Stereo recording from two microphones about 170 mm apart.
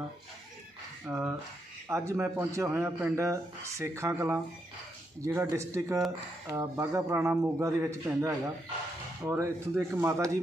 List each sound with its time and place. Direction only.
1.0 s speech: 5° right (ahead or behind)
1.9 s a man's voice: 15° right (ahead or behind)